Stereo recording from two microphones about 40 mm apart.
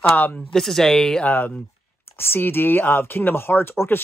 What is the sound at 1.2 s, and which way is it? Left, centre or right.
Speech, left.